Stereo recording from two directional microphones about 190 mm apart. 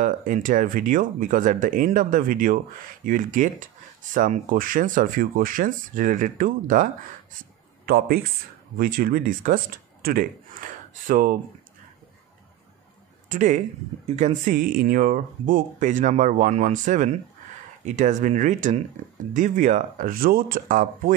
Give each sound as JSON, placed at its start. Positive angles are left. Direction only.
{"t": 0.0, "sound": "speech", "side_deg": -45}
{"t": 13.3, "sound": "speech", "side_deg": -40}